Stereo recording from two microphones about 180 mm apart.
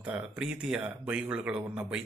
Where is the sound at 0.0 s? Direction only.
5° right (ahead or behind).